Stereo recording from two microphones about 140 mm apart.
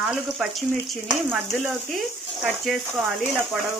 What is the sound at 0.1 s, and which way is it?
Speech, 5° right (ahead or behind).